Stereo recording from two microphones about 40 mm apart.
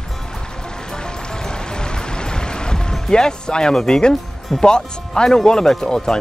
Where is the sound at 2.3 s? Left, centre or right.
Centre.